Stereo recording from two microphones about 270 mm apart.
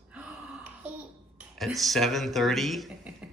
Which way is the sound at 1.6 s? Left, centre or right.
Centre.